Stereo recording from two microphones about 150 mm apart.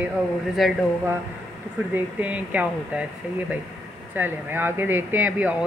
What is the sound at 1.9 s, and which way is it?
Speech, 10° right (ahead or behind).